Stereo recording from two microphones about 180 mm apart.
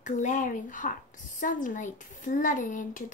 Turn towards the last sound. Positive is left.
turn(degrees=45)  # may be behind; listen again after turning